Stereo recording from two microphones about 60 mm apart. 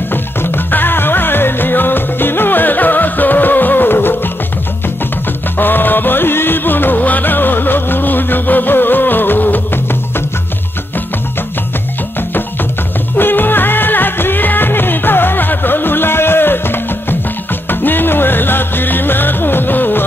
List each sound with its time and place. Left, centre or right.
0.1 s music: left
5.6 s music: left
13.2 s music: left